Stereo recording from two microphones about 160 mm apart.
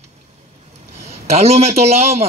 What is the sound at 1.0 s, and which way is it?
A man's voice, 40° right (ahead or behind).